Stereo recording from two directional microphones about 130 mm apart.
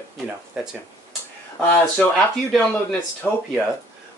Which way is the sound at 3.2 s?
10° left (ahead or behind).